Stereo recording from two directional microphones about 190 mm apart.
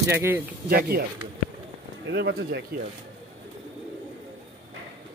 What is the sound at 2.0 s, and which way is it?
Speech, 65° right (ahead or behind).